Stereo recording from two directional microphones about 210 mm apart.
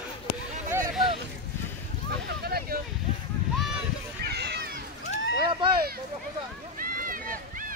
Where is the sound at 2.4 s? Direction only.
45° right (ahead or behind).